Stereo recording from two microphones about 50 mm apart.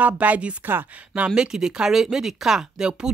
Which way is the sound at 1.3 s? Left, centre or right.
Centre.